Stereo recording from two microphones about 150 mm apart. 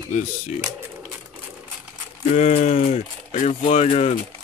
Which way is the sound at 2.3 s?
55° left (ahead or behind).